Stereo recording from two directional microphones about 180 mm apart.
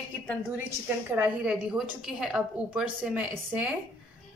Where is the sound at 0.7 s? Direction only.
10° right (ahead or behind).